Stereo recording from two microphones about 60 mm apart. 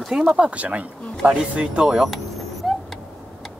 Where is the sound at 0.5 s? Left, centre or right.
Right.